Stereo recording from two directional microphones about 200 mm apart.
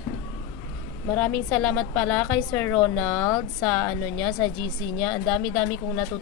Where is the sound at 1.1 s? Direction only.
5° left (ahead or behind).